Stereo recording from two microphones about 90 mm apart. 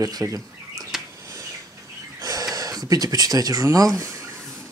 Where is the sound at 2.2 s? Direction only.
45° right (ahead or behind).